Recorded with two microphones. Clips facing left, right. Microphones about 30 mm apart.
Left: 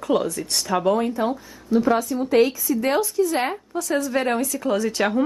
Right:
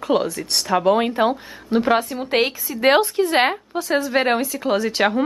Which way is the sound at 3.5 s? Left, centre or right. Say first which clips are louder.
Right 3 dB; right.